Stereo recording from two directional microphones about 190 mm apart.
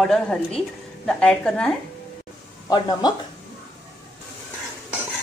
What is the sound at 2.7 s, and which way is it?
Speech, 20° left (ahead or behind).